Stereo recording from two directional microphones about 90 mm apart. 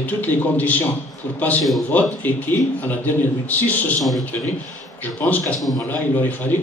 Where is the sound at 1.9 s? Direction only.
20° left (ahead or behind).